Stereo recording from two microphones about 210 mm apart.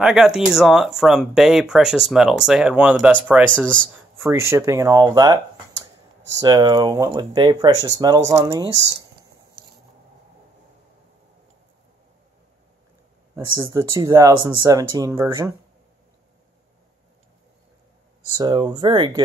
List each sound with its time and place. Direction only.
0.0 s speech: centre (ahead or behind)
3.5 s speech: 5° left (ahead or behind)
3.8 s speech: 10° right (ahead or behind)
13.6 s speech: 15° right (ahead or behind)
18.4 s speech: 20° right (ahead or behind)